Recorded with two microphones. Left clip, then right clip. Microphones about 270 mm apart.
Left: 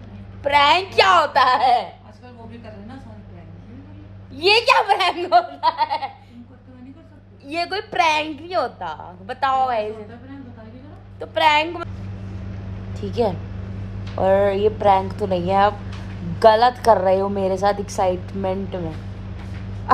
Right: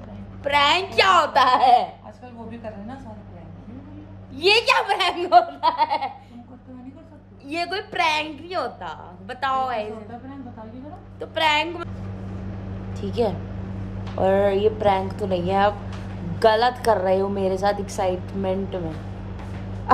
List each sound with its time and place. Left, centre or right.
0.4 s a woman's voice: centre
4.4 s speech: centre
7.4 s a woman's voice: centre
11.1 s a woman's voice: centre
12.9 s a woman's voice: centre